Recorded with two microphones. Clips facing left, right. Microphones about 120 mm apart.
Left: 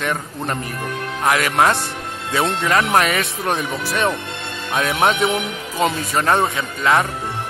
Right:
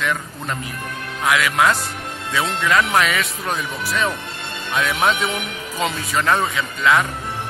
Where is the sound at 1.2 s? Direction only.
35° left (ahead or behind).